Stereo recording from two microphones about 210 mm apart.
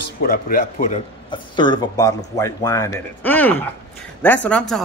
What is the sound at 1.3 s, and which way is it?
A man's voice, 20° left (ahead or behind).